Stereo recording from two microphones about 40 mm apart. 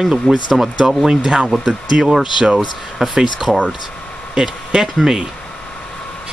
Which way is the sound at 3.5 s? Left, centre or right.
Centre.